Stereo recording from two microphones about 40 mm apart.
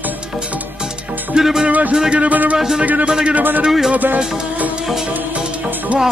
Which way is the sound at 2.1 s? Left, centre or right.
Right.